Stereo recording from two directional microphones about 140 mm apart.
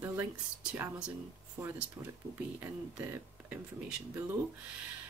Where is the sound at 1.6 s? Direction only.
15° right (ahead or behind).